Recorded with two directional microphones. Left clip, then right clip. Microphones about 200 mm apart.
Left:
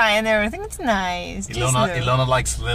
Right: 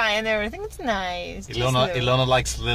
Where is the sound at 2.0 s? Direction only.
45° right (ahead or behind).